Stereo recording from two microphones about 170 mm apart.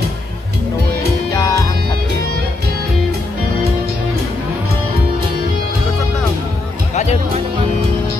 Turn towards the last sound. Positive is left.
turn(degrees=40)  # may be behind; listen again after turning